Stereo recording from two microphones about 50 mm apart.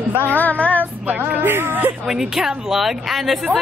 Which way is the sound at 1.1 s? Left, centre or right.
Right.